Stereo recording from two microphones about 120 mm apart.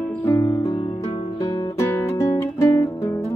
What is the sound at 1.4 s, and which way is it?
Guitar, 25° left (ahead or behind).